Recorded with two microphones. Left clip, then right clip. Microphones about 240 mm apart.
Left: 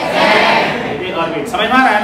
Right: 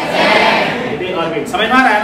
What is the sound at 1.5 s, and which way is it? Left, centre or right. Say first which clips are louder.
Speech: even; centre.